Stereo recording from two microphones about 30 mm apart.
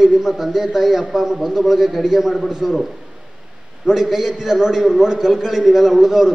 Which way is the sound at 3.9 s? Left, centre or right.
Centre.